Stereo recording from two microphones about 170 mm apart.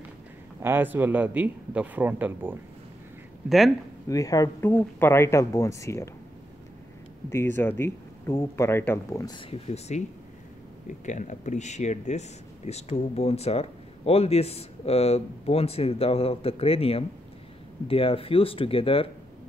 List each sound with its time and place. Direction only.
0.6 s a man's voice: 10° right (ahead or behind)
3.4 s speech: centre (ahead or behind)
4.1 s speech: 20° left (ahead or behind)
7.2 s speech: 15° left (ahead or behind)
9.4 s speech: 35° left (ahead or behind)
11.1 s speech: 45° left (ahead or behind)